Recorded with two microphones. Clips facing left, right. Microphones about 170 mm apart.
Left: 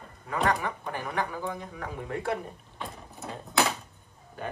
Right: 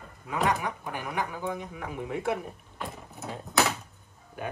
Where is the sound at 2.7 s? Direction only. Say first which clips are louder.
Right 2 dB; 5° right (ahead or behind).